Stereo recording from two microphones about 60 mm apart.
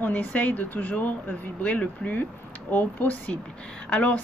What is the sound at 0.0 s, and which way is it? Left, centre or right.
A woman's voice, left.